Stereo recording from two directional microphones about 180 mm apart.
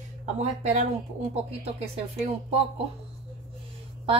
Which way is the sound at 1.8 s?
35° right (ahead or behind).